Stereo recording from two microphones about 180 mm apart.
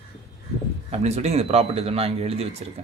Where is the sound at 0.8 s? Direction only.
35° right (ahead or behind).